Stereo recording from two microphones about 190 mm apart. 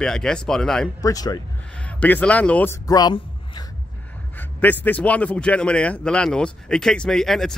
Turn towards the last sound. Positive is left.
turn(degrees=0)  # may be behind; listen again after turning